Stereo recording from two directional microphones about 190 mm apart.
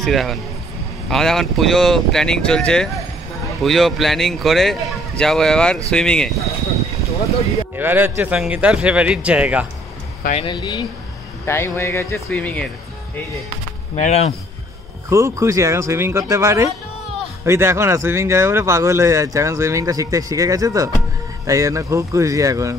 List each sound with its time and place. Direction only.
0.0 s a man's voice: centre (ahead or behind)
7.7 s speech: 10° right (ahead or behind)
10.3 s speech: 25° left (ahead or behind)
11.4 s speech: 10° left (ahead or behind)
13.9 s speech: 35° left (ahead or behind)
15.0 s speech: 15° right (ahead or behind)